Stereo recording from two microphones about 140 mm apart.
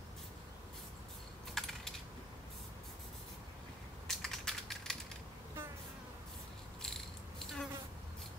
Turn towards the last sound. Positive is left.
turn(degrees=5)  # may be behind; listen again after turning